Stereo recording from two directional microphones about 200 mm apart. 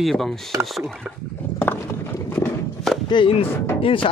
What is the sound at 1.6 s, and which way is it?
Horse, 10° left (ahead or behind).